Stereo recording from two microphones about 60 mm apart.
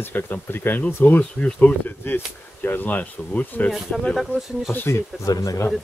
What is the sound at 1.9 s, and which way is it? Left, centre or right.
Speech, left.